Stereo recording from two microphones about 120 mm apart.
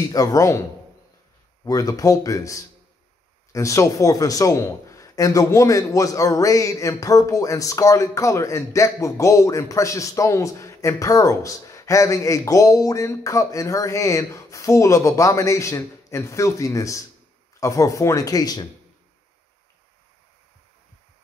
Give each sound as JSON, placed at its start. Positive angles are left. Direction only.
{"t": 0.1, "sound": "a man's voice", "side_deg": 30}